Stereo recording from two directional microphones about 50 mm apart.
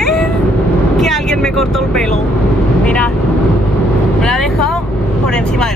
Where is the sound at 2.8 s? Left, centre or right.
Left.